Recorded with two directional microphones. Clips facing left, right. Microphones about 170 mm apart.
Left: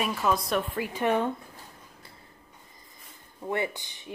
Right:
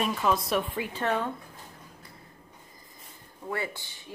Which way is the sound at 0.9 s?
15° left (ahead or behind).